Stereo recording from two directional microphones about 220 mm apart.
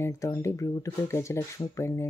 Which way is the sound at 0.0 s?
15° left (ahead or behind).